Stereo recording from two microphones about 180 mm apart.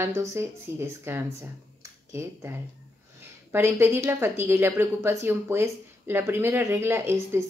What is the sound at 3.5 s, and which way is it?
A woman's voice, 15° right (ahead or behind).